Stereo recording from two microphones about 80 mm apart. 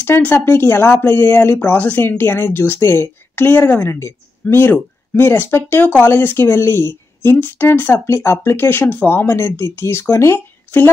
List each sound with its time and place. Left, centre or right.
0.0 s speech: left